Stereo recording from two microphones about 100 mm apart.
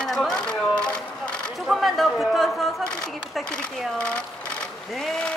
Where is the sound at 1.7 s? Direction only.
Centre (ahead or behind).